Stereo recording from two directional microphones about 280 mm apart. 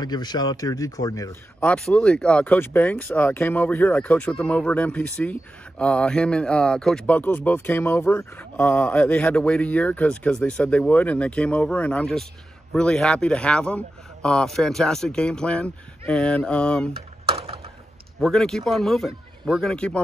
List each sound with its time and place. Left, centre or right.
0.0 s speech: centre
17.3 s mechanisms: right
18.2 s speech: centre